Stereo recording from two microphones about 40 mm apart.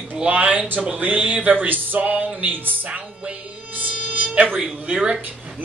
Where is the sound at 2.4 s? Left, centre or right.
Right.